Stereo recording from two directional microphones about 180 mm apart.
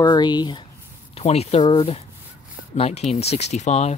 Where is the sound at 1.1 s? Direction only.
35° left (ahead or behind).